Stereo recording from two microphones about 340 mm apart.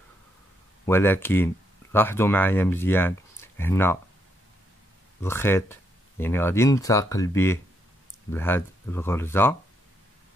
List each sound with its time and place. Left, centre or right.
0.8 s speech: centre
5.2 s speech: centre